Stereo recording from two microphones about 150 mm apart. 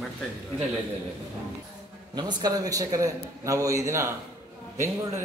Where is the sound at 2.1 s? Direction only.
30° right (ahead or behind).